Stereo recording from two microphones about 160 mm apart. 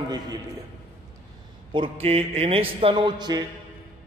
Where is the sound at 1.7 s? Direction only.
35° right (ahead or behind).